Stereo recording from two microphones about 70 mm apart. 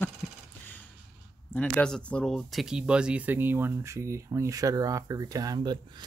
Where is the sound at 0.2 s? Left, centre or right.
Left.